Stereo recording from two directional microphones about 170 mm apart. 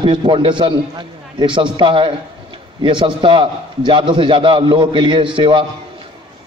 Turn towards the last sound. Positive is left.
turn(degrees=-30)  # may be behind; listen again after turning